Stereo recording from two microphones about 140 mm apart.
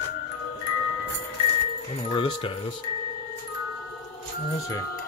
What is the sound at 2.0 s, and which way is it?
Speech, 40° left (ahead or behind).